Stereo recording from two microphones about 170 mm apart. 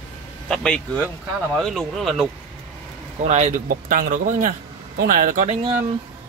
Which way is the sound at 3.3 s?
45° right (ahead or behind).